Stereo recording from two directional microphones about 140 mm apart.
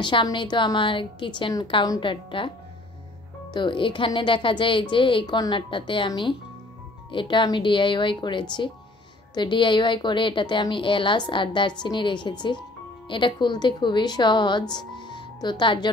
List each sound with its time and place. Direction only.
0.0 s a woman's voice: 35° left (ahead or behind)
3.5 s a woman's voice: 35° left (ahead or behind)